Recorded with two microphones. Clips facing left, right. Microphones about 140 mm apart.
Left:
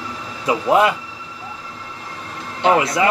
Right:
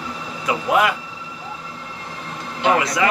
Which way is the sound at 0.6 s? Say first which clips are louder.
Left 3 dB; 30° left (ahead or behind).